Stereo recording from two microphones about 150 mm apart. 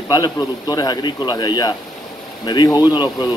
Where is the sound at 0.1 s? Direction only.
25° left (ahead or behind).